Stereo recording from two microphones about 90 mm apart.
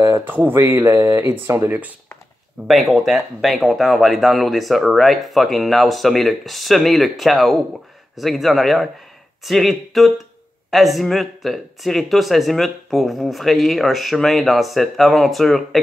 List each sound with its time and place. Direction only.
0.1 s speech: 20° right (ahead or behind)
0.7 s speech: 35° right (ahead or behind)
1.7 s speech: 20° right (ahead or behind)
2.7 s speech: centre (ahead or behind)